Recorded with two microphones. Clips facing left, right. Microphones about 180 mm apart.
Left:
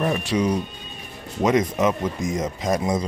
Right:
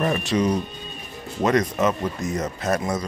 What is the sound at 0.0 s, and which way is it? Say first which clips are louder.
Speech: even; 5° left (ahead or behind).